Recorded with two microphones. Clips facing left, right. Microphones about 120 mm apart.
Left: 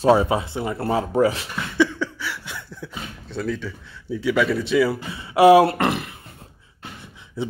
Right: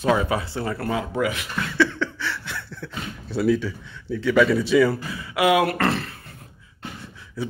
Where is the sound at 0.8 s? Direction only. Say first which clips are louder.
Left 7 dB; 35° left (ahead or behind).